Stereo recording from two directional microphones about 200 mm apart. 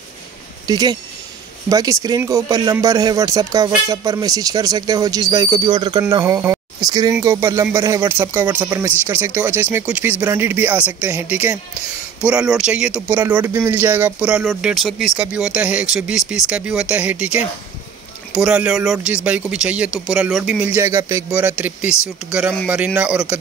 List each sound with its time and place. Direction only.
0.7 s speech: 20° right (ahead or behind)
22.9 s speech: 5° right (ahead or behind)